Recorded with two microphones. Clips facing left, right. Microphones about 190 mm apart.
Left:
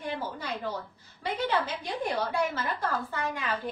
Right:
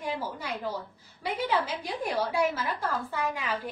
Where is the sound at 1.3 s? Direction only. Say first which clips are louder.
Even; 5° right (ahead or behind).